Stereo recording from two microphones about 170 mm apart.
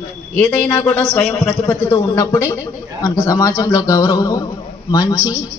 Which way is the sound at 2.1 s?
20° left (ahead or behind).